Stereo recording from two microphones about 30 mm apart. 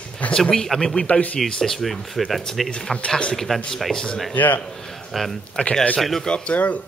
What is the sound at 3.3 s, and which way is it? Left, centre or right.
Speech, centre.